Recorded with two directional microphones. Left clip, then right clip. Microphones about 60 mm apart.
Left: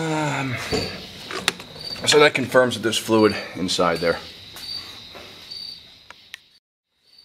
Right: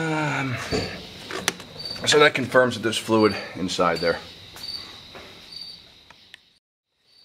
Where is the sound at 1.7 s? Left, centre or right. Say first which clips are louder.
Left 1 dB; left.